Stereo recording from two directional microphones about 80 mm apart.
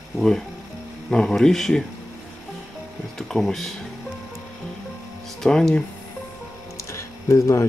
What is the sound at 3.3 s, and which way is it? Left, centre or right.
Speech, centre.